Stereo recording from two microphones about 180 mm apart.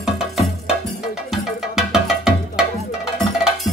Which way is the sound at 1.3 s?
Centre (ahead or behind).